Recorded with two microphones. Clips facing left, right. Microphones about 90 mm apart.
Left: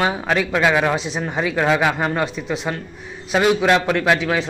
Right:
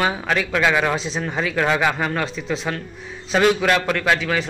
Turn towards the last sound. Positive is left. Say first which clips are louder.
# left 2 dB
turn(degrees=20)  # may be behind; listen again after turning